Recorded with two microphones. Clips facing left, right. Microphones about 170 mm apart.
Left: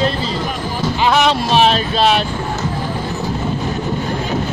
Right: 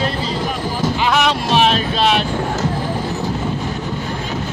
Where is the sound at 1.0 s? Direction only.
30° left (ahead or behind).